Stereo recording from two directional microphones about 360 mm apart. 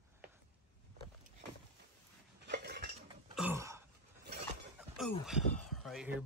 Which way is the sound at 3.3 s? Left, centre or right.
Centre.